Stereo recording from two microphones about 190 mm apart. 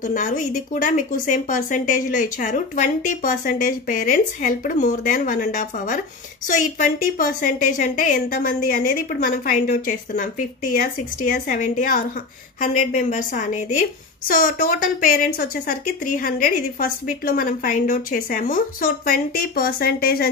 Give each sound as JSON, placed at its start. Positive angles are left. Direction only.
{"t": 0.0, "sound": "speech", "side_deg": 40}